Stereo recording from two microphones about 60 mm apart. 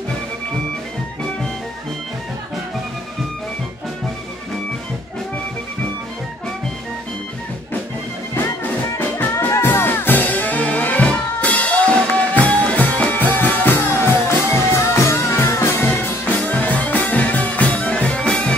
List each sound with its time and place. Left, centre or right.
9.2 s music: left
16.3 s music: left